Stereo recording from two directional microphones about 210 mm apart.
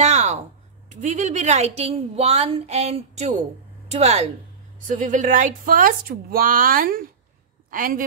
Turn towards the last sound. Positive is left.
turn(degrees=-40)  # may be behind; listen again after turning